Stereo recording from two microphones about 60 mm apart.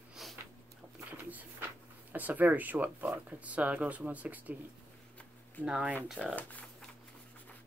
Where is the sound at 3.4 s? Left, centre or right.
Right.